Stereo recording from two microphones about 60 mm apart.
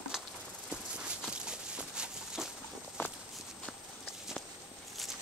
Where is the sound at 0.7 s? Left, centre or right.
Centre.